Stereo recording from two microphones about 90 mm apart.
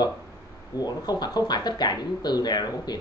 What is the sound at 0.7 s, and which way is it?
Speech, 50° left (ahead or behind).